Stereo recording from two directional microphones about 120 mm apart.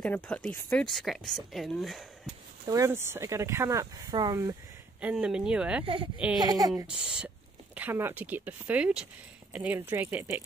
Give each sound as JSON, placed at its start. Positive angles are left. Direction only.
{"t": 0.0, "sound": "speech", "side_deg": 10}
{"t": 0.8, "sound": "speech", "side_deg": 0}
{"t": 2.7, "sound": "speech", "side_deg": -25}
{"t": 5.0, "sound": "speech", "side_deg": -5}
{"t": 6.4, "sound": "speech", "side_deg": -30}
{"t": 7.0, "sound": "speech", "side_deg": -10}